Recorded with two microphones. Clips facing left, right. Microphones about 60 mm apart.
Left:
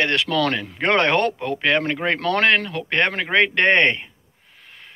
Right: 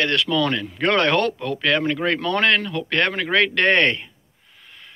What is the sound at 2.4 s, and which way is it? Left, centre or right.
Speech, left.